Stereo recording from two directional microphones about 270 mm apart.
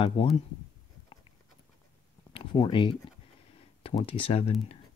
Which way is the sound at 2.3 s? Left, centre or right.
Centre.